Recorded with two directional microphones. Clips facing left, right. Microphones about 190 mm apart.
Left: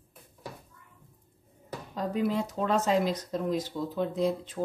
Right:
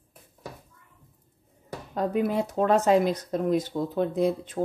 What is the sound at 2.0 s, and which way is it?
Speech, 55° right (ahead or behind).